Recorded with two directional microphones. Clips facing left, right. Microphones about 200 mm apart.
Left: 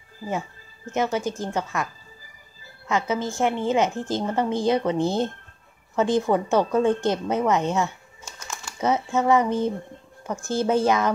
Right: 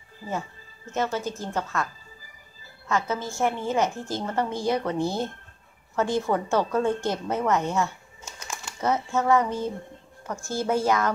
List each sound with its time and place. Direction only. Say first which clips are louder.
0.9 s a woman's voice: left 3 dB; 15° left (ahead or behind)
2.9 s a woman's voice: left 3 dB; 20° left (ahead or behind)